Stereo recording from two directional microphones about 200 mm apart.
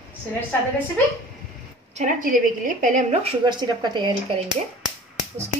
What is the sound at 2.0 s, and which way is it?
Speech, 40° right (ahead or behind).